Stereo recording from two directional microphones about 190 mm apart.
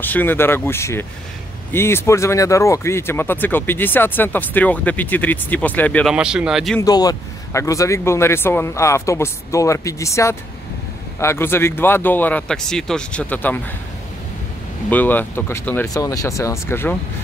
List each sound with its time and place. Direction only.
0.0 s speech: 10° left (ahead or behind)
6.1 s speech: 5° right (ahead or behind)
6.8 s speech: 20° left (ahead or behind)
14.9 s speech: 10° left (ahead or behind)